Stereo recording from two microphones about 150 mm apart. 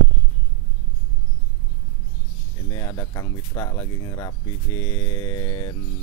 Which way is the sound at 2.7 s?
25° left (ahead or behind).